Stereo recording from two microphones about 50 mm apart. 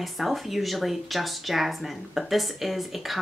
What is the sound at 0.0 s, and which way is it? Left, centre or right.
Speech, centre.